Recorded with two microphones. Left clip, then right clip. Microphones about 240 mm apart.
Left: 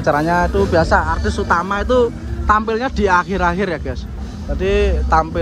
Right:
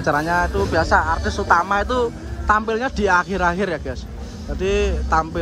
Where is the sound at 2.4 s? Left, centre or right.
Centre.